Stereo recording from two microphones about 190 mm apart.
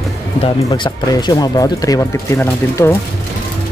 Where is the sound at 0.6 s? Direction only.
20° left (ahead or behind).